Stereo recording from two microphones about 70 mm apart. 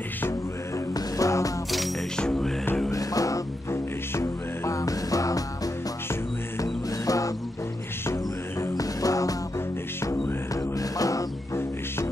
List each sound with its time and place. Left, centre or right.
0.9 s music: left
2.1 s music: centre
2.9 s music: left
3.7 s music: left
6.6 s music: left
8.1 s music: left
8.7 s music: left
10.5 s music: left